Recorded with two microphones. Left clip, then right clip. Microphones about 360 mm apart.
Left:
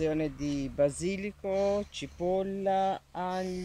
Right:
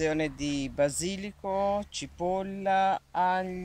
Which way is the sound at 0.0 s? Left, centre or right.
Right.